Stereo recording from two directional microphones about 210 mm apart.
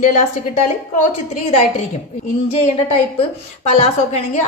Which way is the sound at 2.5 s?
30° left (ahead or behind).